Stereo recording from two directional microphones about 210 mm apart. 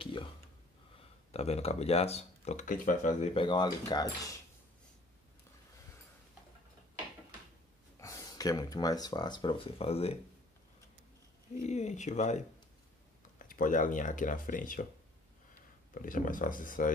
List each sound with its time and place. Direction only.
0.0 s a sound: 25° left (ahead or behind)
0.9 s speech: 30° left (ahead or behind)
8.0 s speech: 15° left (ahead or behind)
11.6 s speech: 35° left (ahead or behind)
15.9 s speech: 40° left (ahead or behind)